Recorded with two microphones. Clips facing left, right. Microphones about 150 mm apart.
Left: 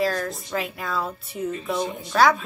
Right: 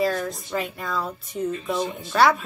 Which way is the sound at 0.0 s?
Centre (ahead or behind).